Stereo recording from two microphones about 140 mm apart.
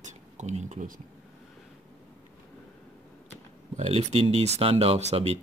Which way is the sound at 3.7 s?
50° right (ahead or behind).